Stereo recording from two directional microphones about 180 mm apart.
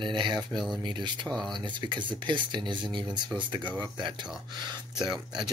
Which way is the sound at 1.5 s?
25° right (ahead or behind).